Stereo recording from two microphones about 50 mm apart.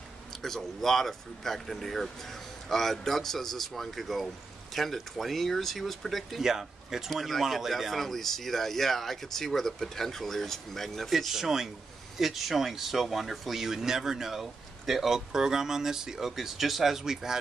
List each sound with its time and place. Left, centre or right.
0.4 s speech: centre
6.4 s speech: centre